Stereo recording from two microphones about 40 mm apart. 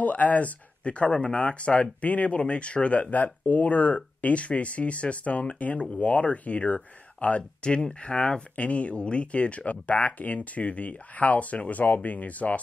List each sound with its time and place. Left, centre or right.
0.0 s speech: left
8.5 s speech: left